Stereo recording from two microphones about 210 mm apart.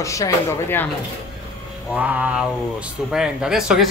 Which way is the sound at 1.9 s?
5° right (ahead or behind).